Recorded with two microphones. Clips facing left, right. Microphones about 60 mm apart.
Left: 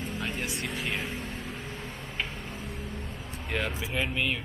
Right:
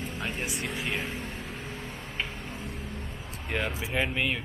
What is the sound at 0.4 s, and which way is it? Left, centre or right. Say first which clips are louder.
Speech: even; centre.